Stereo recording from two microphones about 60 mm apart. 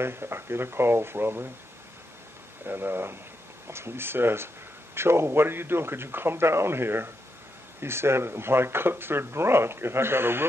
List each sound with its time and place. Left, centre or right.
0.0 s speech: right
2.6 s speech: right